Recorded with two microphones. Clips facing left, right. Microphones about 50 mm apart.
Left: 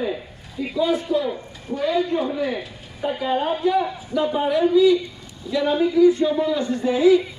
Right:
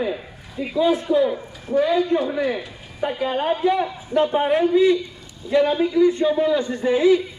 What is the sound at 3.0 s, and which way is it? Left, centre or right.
A man's voice, right.